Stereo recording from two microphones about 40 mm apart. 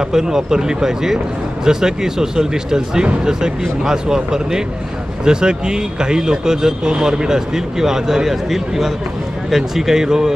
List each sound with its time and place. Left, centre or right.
0.1 s speech: centre